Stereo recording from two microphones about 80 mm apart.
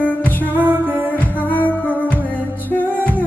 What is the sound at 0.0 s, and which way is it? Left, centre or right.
Music, left.